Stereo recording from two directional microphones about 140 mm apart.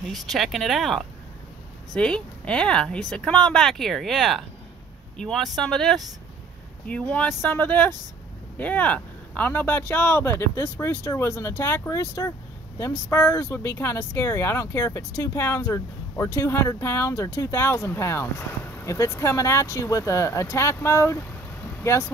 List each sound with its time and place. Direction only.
0.1 s speech: centre (ahead or behind); by 22.1 s 20° left (ahead or behind)